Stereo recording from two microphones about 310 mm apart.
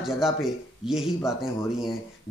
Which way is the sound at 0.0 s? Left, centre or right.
Centre.